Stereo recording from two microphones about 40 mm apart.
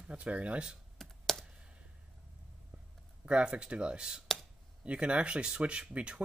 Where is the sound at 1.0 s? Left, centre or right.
Centre.